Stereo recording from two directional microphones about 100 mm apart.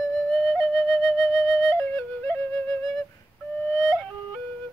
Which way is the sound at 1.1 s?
Centre (ahead or behind).